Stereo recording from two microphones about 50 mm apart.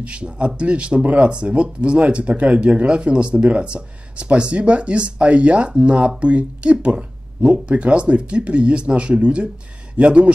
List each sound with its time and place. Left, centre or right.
0.0 s speech: right